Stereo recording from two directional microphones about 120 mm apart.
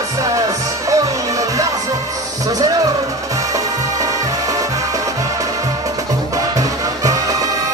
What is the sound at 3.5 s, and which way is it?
Music, 30° right (ahead or behind).